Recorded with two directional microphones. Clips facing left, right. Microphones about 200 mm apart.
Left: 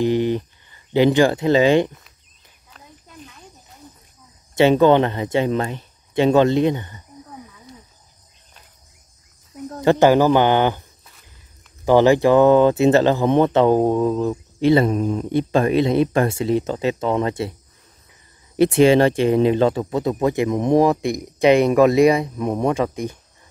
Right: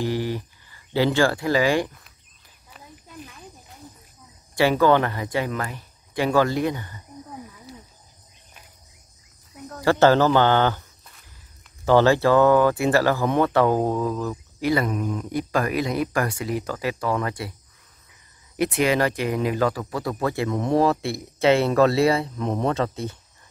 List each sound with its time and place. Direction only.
0.0 s speech: 20° left (ahead or behind)
2.7 s a sound: 5° right (ahead or behind)
4.6 s speech: 20° left (ahead or behind)
9.7 s speech: 20° left (ahead or behind)
11.8 s speech: 15° left (ahead or behind)
18.6 s speech: 30° left (ahead or behind); by 23.1 s 15° left (ahead or behind)